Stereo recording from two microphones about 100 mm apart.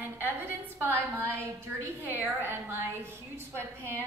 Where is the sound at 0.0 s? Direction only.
20° right (ahead or behind).